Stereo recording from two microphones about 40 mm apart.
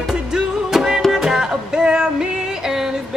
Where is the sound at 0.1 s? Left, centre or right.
Centre.